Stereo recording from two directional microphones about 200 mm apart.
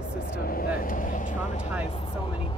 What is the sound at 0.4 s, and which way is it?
Vehicle, 45° left (ahead or behind).